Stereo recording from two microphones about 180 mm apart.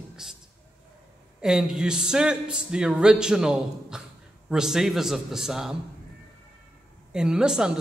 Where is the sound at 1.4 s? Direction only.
5° right (ahead or behind).